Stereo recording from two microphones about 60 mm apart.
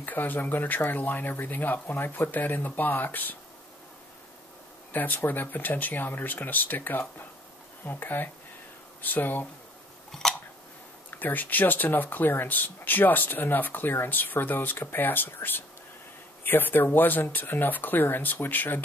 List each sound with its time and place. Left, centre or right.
0.0 s speech: left
4.9 s speech: left
10.1 s scissors: centre
11.1 s speech: left